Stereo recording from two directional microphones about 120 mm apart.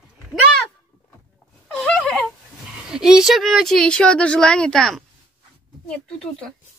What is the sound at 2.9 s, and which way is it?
A woman's voice, 5° right (ahead or behind).